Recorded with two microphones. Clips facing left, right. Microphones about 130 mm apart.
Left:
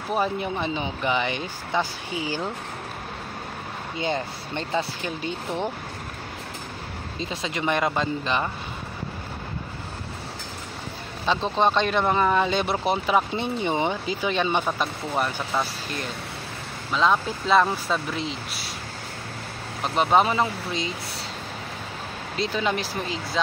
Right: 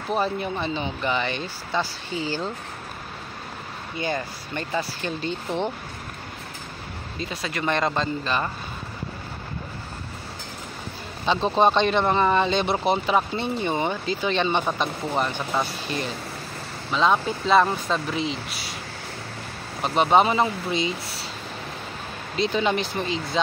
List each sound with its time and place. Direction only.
0.1 s speech: 15° left (ahead or behind)
4.0 s speech: 20° left (ahead or behind)
5.0 s speech: 10° left (ahead or behind)
7.2 s speech: 20° left (ahead or behind)
11.2 s speech: 5° right (ahead or behind)
16.9 s speech: centre (ahead or behind)
19.8 s speech: 5° right (ahead or behind)
22.4 s speech: centre (ahead or behind)